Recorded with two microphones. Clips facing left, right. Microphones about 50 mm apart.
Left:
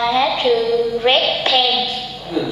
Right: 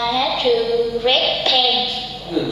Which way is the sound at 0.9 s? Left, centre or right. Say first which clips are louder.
Left 2 dB; left.